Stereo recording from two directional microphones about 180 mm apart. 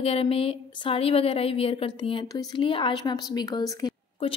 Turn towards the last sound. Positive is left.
turn(degrees=20)  # may be behind; listen again after turning